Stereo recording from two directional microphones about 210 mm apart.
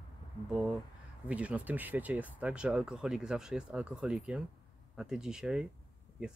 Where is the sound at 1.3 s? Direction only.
5° right (ahead or behind).